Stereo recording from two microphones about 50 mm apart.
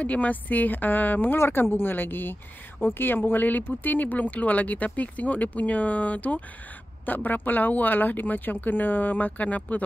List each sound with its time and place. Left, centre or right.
0.0 s speech: left
1.4 s speech: left